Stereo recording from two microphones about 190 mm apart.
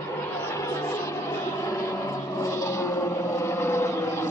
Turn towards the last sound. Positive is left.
turn(degrees=15)  # may be behind; listen again after turning